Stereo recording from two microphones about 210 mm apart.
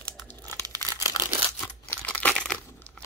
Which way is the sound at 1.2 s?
20° left (ahead or behind).